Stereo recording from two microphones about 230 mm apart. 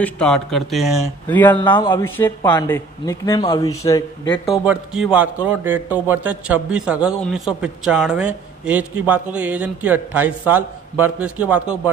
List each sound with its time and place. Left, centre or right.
0.0 s speech: centre
1.6 s speech: centre
2.1 s speech: centre
4.5 s a man's voice: centre